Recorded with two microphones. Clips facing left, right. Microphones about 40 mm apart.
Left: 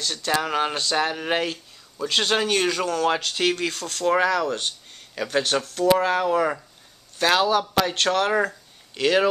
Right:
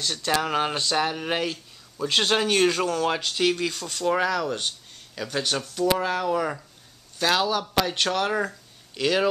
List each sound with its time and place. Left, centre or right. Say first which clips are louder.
0.0 s speech: left 1 dB; centre
2.0 s speech: even; centre
5.6 s speech: left 3 dB; centre
5.9 s speech: left 4 dB; centre